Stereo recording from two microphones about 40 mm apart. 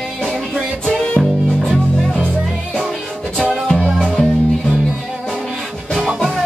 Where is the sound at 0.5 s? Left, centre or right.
Left.